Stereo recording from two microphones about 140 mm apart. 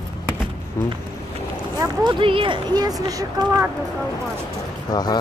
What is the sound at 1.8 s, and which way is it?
Speech, 35° right (ahead or behind).